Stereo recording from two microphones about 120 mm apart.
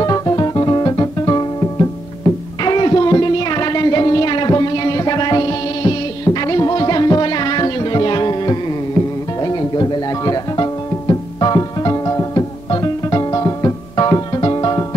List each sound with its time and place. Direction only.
0.0 s music: 30° left (ahead or behind)